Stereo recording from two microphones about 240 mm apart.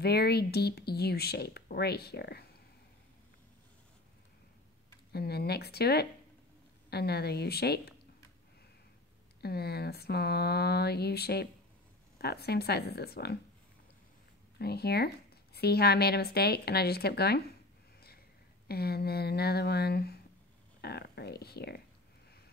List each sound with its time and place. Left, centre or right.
0.0 s speech: left
5.1 s speech: left
9.4 s speech: left
14.6 s speech: left
18.7 s speech: left